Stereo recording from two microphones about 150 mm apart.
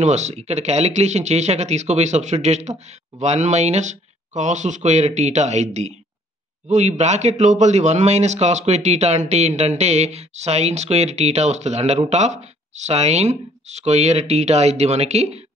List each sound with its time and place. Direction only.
0.0 s a man's voice: 50° right (ahead or behind)